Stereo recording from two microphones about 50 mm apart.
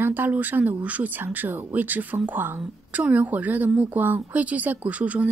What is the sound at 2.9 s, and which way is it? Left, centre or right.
Speech, right.